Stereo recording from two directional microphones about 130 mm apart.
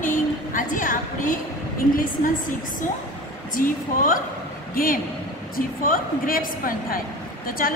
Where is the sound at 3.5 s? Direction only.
90° left.